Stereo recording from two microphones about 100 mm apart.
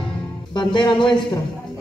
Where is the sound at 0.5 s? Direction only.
50° left (ahead or behind).